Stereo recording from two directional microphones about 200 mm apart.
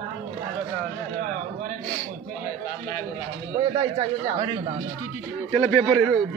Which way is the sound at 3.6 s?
25° right (ahead or behind).